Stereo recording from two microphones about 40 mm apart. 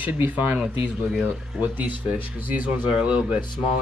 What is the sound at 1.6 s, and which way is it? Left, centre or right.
Speech, right.